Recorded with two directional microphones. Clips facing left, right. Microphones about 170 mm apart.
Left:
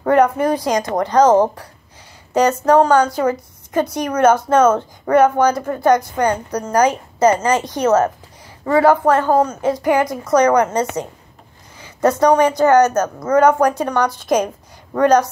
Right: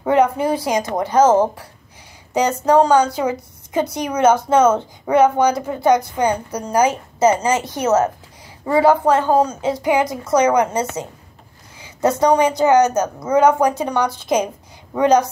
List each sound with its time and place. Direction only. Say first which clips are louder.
0.0 s a woman's voice: left 2 dB; 10° right (ahead or behind)
2.3 s a woman's voice: left 2 dB; 10° right (ahead or behind)